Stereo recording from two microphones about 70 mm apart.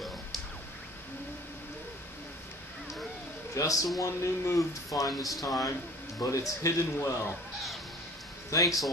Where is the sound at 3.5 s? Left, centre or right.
Left.